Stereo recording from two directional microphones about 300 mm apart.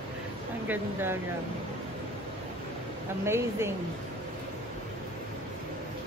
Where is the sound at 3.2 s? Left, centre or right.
Centre.